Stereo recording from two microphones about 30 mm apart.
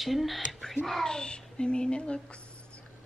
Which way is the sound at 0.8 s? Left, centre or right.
Centre.